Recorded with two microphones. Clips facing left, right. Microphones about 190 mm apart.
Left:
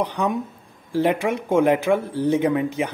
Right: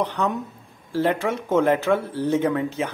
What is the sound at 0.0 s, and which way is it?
Speech, 15° left (ahead or behind).